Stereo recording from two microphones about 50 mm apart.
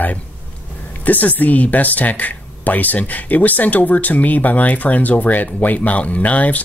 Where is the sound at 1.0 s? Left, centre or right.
Left.